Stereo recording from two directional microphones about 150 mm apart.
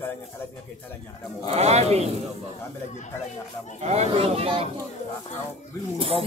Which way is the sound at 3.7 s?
45° right (ahead or behind).